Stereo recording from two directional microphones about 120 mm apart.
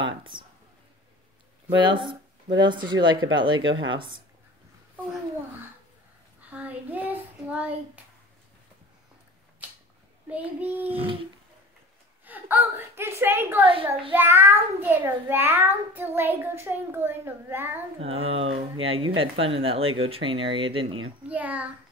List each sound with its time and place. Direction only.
0.0 s speech: 45° right (ahead or behind)
1.8 s speech: 40° right (ahead or behind)
6.5 s a child's voice: 10° right (ahead or behind)
9.6 s a sound: 15° right (ahead or behind)
10.2 s a child's voice: 15° right (ahead or behind)
11.0 s speech: 50° right (ahead or behind)
12.3 s a child's voice: 15° right (ahead or behind)
18.0 s speech: 50° right (ahead or behind)
21.3 s a child's voice: 10° right (ahead or behind)